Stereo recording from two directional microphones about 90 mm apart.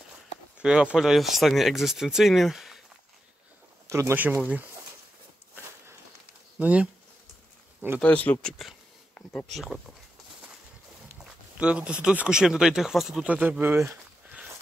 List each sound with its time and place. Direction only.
0.6 s speech: 10° right (ahead or behind)
3.8 s a sound: 35° right (ahead or behind)
4.1 s speech: 20° right (ahead or behind)
6.6 s speech: 15° right (ahead or behind)
8.0 s speech: 15° left (ahead or behind)
8.5 s speech: centre (ahead or behind)
9.1 s a sound: 15° left (ahead or behind)
9.5 s speech: centre (ahead or behind)
11.1 s speech: 15° right (ahead or behind)